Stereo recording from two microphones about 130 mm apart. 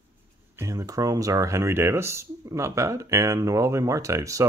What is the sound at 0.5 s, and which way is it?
Speech, 25° right (ahead or behind).